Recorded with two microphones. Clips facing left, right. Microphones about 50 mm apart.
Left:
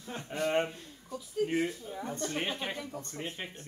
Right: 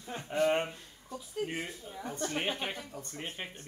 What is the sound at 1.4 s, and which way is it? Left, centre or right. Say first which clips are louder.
Speech: left 8 dB; right.